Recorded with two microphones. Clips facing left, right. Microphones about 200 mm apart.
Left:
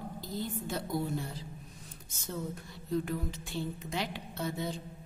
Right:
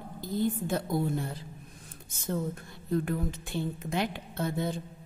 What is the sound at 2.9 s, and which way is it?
A woman's voice, 55° right (ahead or behind).